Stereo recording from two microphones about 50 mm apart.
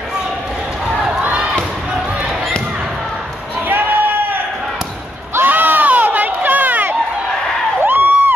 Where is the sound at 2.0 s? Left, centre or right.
Right.